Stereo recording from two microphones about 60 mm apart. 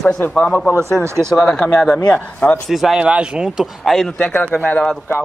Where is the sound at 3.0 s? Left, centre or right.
Centre.